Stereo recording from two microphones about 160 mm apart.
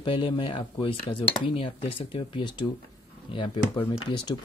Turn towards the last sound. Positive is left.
turn(degrees=30)  # may be behind; listen again after turning